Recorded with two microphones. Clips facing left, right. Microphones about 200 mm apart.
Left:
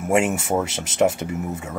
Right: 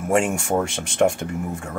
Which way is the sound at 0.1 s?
5° left (ahead or behind).